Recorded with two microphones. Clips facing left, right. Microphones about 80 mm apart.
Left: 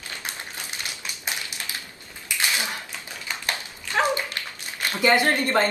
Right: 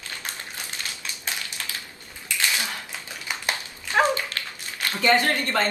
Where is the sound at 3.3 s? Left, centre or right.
Centre.